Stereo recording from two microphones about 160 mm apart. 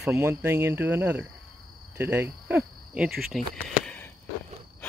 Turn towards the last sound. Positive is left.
turn(degrees=10)  # may be behind; listen again after turning